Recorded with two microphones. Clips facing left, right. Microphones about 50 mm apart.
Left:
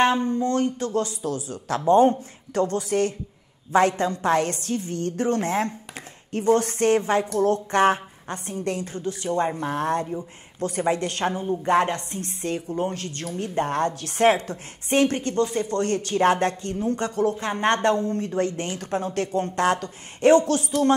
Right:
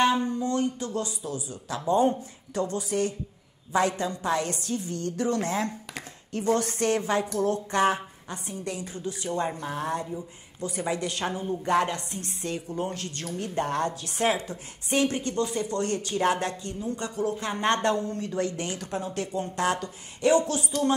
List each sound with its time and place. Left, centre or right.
0.4 s a woman's voice: left
11.2 s a woman's voice: left
17.4 s a woman's voice: left